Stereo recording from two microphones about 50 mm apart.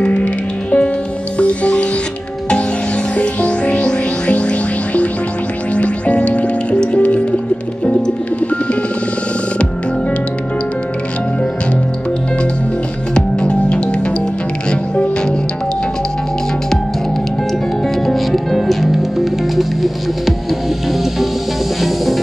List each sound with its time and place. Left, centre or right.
0.0 s music: left
3.2 s music: left
13.1 s music: centre
18.0 s music: centre
21.8 s music: centre